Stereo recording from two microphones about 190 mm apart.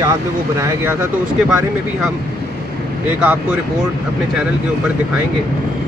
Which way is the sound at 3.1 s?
10° right (ahead or behind).